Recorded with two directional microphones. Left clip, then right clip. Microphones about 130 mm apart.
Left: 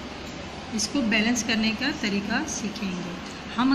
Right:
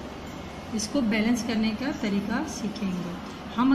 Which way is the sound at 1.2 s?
75° right (ahead or behind).